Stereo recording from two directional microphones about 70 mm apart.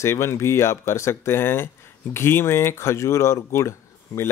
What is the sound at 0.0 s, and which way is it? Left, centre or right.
Speech, left.